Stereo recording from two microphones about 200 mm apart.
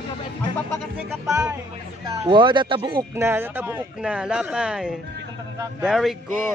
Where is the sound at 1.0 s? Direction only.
15° right (ahead or behind).